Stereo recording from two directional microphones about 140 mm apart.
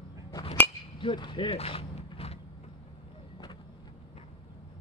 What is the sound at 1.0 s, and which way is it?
Speech, 35° left (ahead or behind).